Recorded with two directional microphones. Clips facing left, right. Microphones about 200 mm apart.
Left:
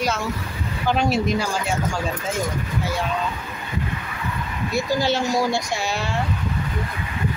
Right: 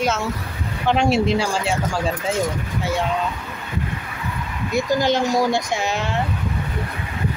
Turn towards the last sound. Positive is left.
turn(degrees=-20)  # may be behind; listen again after turning